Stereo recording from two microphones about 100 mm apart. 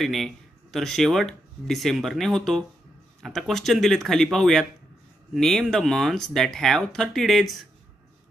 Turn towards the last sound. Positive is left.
turn(degrees=0)  # may be behind; listen again after turning